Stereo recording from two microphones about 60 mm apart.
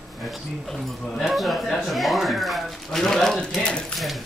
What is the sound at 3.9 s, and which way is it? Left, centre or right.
Speech, centre.